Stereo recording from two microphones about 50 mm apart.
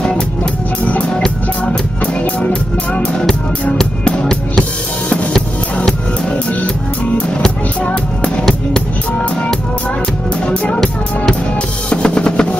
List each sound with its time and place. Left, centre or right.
0.4 s music: left
2.4 s music: left
7.4 s music: left
10.4 s music: left
10.7 s music: centre
11.9 s music: left